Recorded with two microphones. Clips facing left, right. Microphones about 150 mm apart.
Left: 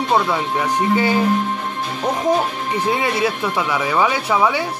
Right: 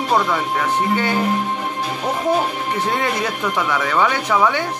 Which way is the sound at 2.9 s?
10° left (ahead or behind).